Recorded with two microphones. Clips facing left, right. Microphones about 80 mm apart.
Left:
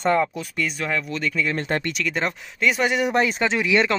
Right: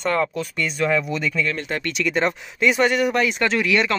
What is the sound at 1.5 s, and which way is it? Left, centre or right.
Speech, left.